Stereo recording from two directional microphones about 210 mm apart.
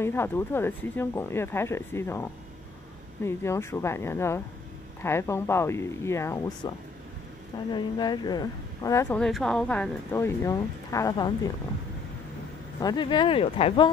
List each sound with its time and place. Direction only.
0.0 s speech: 10° left (ahead or behind)
3.3 s speech: 10° left (ahead or behind)
7.7 s speech: 20° left (ahead or behind)
12.8 s speech: 20° left (ahead or behind)